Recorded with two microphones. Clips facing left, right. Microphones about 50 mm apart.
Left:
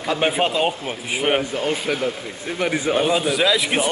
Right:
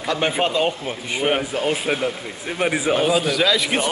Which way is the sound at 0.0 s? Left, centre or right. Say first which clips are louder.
Left 1 dB; centre.